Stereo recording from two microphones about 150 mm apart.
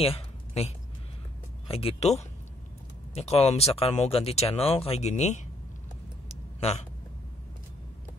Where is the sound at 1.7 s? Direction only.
40° left (ahead or behind).